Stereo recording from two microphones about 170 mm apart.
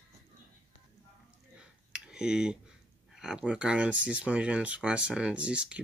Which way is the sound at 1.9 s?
5° right (ahead or behind).